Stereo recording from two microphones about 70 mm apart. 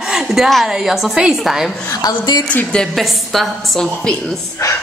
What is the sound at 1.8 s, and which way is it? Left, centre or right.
Speech, left.